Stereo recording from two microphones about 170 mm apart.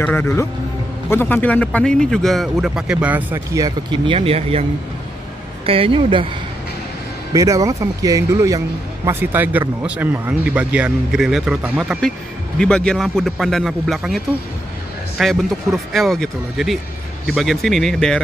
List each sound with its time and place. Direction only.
0.0 s speech: 10° left (ahead or behind); by 3.6 s 10° right (ahead or behind)
3.6 s speech: 30° right (ahead or behind)
5.7 s speech: 30° right (ahead or behind)
7.3 s a man's voice: 20° right (ahead or behind)
12.5 s speech: 5° left (ahead or behind)